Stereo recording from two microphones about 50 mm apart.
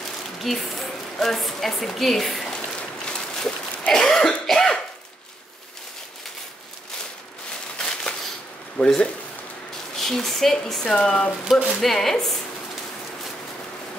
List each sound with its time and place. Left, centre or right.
0.4 s a woman's voice: centre
2.5 s a sound: centre
3.9 s speech: centre
4.5 s throat clearing: centre
7.8 s a sound: centre
8.7 s speech: left
9.9 s a woman's voice: centre